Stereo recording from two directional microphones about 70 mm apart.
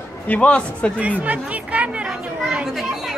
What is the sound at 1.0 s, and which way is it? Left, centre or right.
Speech, right.